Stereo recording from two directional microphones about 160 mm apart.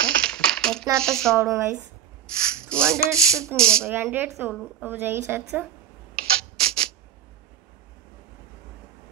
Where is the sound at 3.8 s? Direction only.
15° right (ahead or behind).